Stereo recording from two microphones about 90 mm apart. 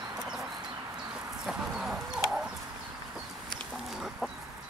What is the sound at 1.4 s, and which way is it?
Chicken, 5° right (ahead or behind).